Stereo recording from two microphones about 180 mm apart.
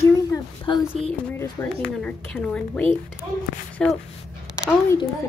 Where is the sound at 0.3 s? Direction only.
20° left (ahead or behind).